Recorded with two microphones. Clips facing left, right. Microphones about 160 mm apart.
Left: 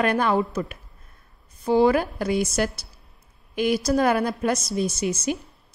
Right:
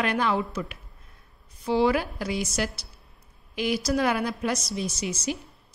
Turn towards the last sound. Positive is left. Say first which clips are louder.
# left 5 dB
turn(degrees=50)  # may be behind; listen again after turning